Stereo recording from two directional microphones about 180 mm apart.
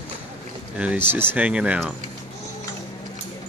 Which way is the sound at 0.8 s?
10° right (ahead or behind).